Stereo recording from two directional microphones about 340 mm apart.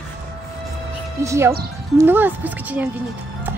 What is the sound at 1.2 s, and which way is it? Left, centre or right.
A woman's voice, centre.